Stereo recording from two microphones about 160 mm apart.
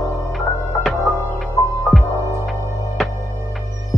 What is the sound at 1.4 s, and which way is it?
Music, centre (ahead or behind).